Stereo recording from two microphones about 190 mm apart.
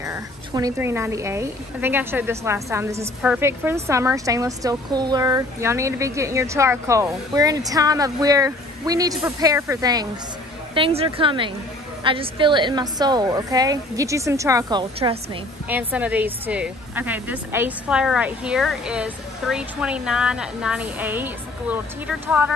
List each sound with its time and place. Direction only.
0.0 s a woman's voice: 15° right (ahead or behind)
10.7 s a woman's voice: 30° right (ahead or behind)
15.7 s a woman's voice: 10° right (ahead or behind)